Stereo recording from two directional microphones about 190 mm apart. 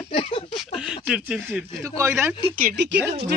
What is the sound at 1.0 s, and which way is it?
A man's voice, 5° right (ahead or behind).